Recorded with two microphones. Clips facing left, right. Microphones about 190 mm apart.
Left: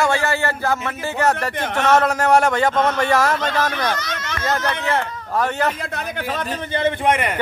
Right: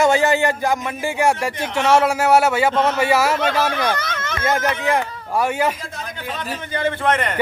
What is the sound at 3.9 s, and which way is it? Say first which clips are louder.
Speech: right 1 dB; 55° right (ahead or behind).